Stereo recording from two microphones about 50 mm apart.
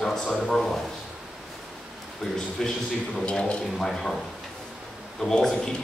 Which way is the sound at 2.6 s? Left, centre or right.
Centre.